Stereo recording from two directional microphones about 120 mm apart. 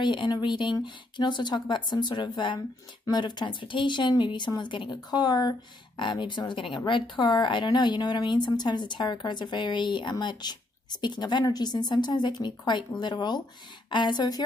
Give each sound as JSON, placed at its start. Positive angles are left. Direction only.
{"t": 0.0, "sound": "a woman's voice", "side_deg": 40}